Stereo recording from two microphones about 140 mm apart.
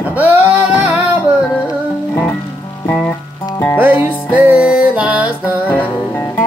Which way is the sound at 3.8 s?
15° right (ahead or behind).